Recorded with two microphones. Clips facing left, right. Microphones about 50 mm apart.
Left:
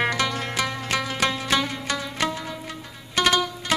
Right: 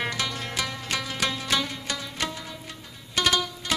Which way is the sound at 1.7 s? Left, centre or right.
Left.